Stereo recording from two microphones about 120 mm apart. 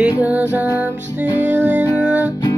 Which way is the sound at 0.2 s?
15° right (ahead or behind).